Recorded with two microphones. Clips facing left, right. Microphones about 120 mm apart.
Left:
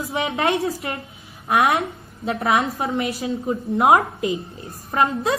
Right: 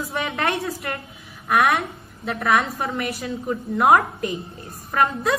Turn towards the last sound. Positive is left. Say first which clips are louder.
# left 1 dB
turn(degrees=25)  # may be behind; listen again after turning